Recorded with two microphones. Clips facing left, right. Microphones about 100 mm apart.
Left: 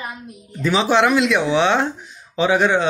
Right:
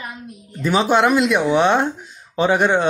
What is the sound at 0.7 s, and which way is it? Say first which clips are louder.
Speech: right 1 dB; 45° right (ahead or behind).